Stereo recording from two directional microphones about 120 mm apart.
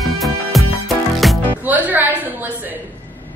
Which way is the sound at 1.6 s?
15° right (ahead or behind).